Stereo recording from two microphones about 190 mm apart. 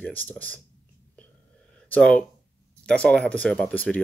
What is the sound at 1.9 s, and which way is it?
Speech, 5° left (ahead or behind).